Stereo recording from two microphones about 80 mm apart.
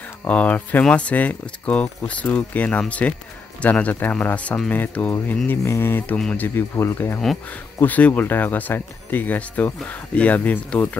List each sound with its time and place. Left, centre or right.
0.3 s speech: centre
5.5 s speech: left